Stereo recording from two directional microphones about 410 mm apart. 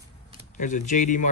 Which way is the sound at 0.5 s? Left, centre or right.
Centre.